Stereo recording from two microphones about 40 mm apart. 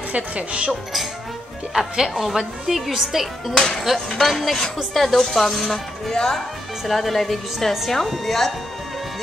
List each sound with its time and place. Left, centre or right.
0.1 s speech: right
1.7 s speech: centre
3.5 s speech: centre